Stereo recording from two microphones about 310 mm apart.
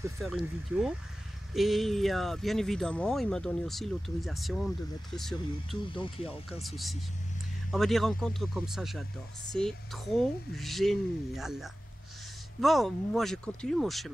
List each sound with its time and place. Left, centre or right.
0.2 s speech: centre
5.9 s speech: centre
6.6 s speech: centre